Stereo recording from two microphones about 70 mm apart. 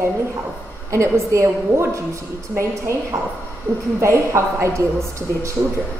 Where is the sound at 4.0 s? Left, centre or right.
Right.